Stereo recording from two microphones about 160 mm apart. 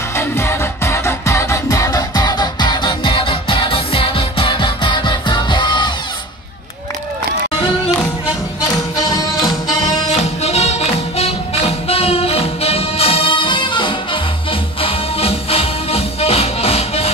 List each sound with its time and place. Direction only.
0.1 s music: 15° left (ahead or behind)
9.0 s music: 25° left (ahead or behind)
10.4 s music: 40° left (ahead or behind)